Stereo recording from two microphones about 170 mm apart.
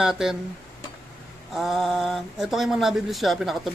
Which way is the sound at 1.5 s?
Centre (ahead or behind).